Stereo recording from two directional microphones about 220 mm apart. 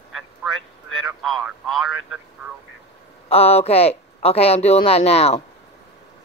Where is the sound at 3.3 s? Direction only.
30° left (ahead or behind).